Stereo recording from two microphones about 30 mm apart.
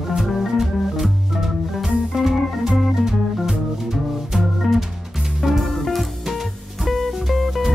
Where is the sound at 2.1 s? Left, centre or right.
Centre.